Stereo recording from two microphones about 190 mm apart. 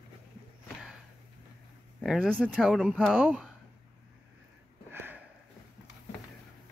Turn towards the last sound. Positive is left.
turn(degrees=-10)  # may be behind; listen again after turning